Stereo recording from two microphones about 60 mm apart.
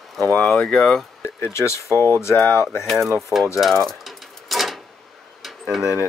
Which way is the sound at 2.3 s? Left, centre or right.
Left.